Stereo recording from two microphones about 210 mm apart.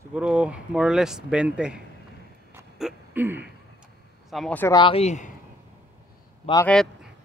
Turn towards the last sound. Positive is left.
turn(degrees=25)  # may be behind; listen again after turning